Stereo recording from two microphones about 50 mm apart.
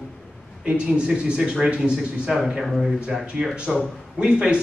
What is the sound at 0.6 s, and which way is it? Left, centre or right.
Speech, centre.